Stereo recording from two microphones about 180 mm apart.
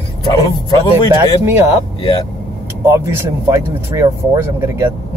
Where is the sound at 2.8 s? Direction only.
15° right (ahead or behind).